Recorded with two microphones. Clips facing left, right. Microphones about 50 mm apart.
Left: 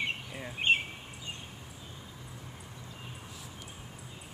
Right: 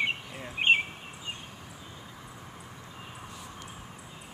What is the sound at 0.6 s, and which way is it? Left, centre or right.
Speech, right.